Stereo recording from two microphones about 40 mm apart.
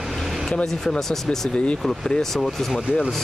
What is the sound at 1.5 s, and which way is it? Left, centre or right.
Speech, left.